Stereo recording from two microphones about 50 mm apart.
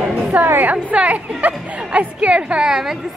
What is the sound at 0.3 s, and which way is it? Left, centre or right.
A woman's voice, right.